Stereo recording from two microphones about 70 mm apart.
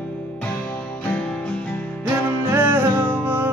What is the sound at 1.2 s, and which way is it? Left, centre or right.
Music, centre.